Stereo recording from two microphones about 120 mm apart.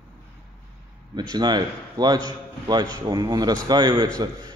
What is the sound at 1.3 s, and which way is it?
Speech, 35° right (ahead or behind).